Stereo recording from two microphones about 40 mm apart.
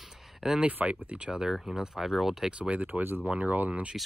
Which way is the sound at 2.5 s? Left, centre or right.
Right.